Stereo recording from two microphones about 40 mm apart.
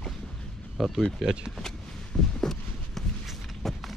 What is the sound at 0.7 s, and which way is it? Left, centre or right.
Speech, centre.